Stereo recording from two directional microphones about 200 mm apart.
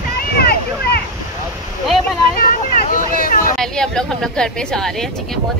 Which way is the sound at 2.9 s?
45° left (ahead or behind).